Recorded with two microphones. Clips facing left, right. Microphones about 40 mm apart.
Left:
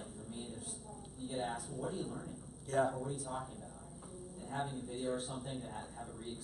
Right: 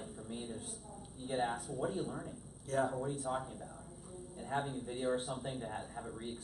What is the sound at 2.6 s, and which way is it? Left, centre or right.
Speech, centre.